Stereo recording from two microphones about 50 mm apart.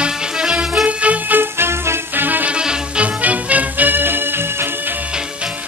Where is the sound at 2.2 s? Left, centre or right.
Right.